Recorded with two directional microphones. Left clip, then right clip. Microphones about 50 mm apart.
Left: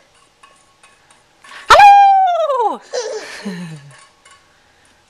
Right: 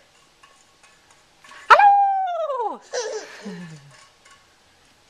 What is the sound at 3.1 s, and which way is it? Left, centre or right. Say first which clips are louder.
Laughter: left 7 dB; left.